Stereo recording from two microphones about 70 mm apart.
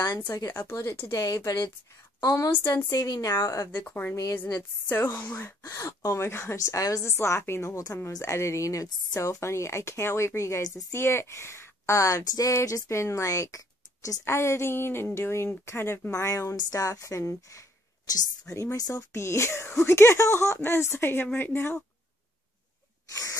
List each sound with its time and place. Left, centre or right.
0.3 s a woman's voice: left
3.8 s a woman's voice: left
4.1 s speech: left
4.6 s speech: left
5.6 s speech: left
7.1 s speech: left
10.9 s a woman's voice: left
14.2 s speech: left
16.5 s speech: left